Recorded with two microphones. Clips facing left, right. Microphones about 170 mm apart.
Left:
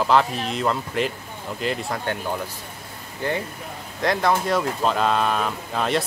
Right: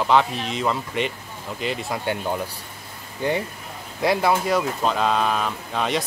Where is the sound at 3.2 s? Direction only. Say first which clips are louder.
Right 2 dB; 15° right (ahead or behind); by 6.0 s centre (ahead or behind).